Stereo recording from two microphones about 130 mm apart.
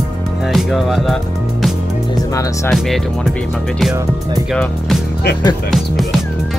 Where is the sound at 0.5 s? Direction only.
Centre (ahead or behind).